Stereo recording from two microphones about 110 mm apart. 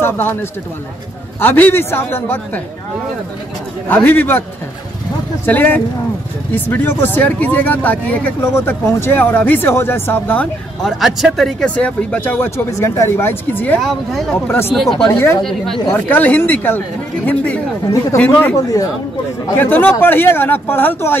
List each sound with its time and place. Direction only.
0.0 s speech: 20° left (ahead or behind)
3.9 s speech: 15° left (ahead or behind)
10.8 s speech: centre (ahead or behind)
11.7 s speech: 10° left (ahead or behind)
13.8 s speech: centre (ahead or behind)
15.0 s speech: 25° left (ahead or behind)
15.4 s speech: 5° left (ahead or behind)
15.9 s speech: 15° left (ahead or behind)
19.6 s speech: 15° left (ahead or behind)